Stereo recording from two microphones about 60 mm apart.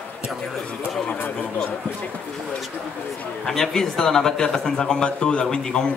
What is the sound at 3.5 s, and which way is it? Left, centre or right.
Speech, centre.